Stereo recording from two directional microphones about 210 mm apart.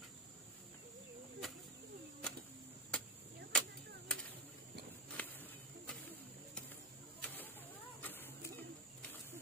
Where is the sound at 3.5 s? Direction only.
5° left (ahead or behind).